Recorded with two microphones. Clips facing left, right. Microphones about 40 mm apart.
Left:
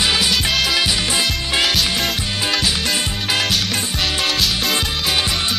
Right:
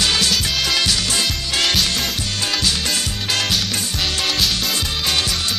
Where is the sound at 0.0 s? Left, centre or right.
Centre.